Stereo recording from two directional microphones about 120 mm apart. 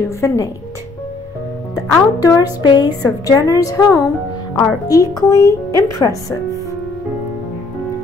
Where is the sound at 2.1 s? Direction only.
30° left (ahead or behind).